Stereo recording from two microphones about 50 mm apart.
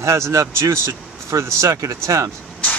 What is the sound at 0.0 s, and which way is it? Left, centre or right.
Speech, right.